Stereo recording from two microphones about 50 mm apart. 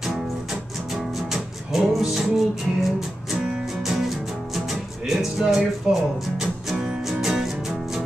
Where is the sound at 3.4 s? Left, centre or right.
Centre.